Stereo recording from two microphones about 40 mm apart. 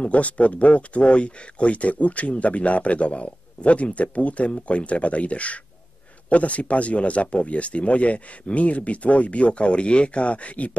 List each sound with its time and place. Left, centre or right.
0.0 s speech: left